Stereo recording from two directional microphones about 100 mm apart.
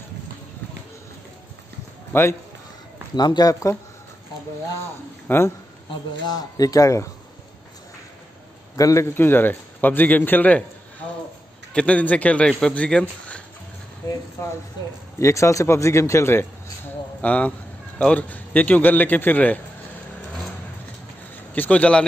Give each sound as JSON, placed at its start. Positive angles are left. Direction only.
{"t": 2.1, "sound": "a man's voice", "side_deg": 20}
{"t": 3.2, "sound": "speech", "side_deg": 45}
{"t": 5.3, "sound": "a man's voice", "side_deg": 20}
{"t": 6.2, "sound": "speech", "side_deg": 40}
{"t": 8.7, "sound": "a man's voice", "side_deg": 35}
{"t": 9.1, "sound": "a man's voice", "side_deg": 20}
{"t": 15.1, "sound": "a man's voice", "side_deg": 30}
{"t": 17.2, "sound": "a man's voice", "side_deg": 15}
{"t": 21.5, "sound": "a man's voice", "side_deg": 15}